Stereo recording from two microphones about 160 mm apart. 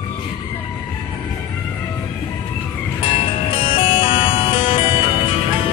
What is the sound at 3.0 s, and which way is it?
Music, 35° left (ahead or behind).